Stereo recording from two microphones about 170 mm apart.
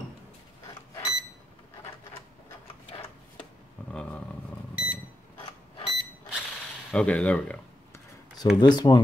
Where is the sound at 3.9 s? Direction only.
10° left (ahead or behind).